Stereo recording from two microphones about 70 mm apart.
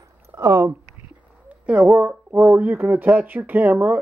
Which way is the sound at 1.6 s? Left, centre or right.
Right.